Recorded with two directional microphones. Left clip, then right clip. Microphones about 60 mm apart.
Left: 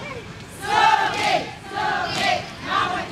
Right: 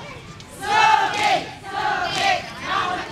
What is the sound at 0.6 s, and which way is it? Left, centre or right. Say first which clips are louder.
Battle cry: right 1 dB; centre.